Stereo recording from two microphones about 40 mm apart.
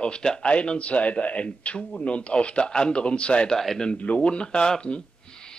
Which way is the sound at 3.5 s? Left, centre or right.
Centre.